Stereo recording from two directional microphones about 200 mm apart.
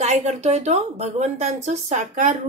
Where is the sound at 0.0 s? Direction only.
35° right (ahead or behind).